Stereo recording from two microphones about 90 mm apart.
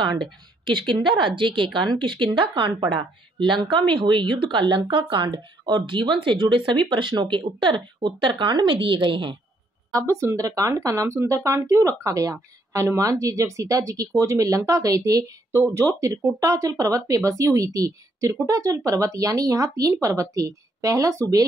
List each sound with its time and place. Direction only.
0.7 s speech: 60° right (ahead or behind)
9.8 s speech: 35° right (ahead or behind)